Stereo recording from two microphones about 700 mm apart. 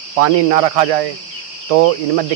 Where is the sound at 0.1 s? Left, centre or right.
Right.